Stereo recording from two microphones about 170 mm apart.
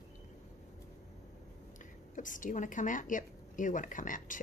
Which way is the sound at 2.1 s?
50° left (ahead or behind).